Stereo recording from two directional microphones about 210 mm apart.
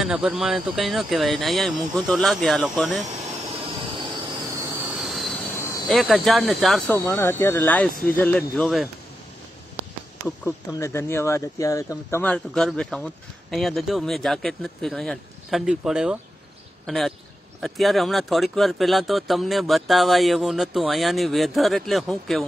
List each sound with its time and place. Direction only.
0.0 s speech: centre (ahead or behind)
3.1 s vehicle: 30° right (ahead or behind)
4.7 s train: centre (ahead or behind)
5.6 s cricket: 15° left (ahead or behind)
5.9 s speech: centre (ahead or behind)
6.9 s speech: 10° left (ahead or behind)
10.7 s a man's voice: 15° left (ahead or behind)